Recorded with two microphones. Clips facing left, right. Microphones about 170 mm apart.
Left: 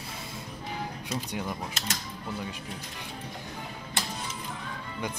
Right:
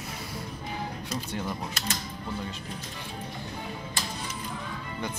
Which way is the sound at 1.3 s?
15° left (ahead or behind).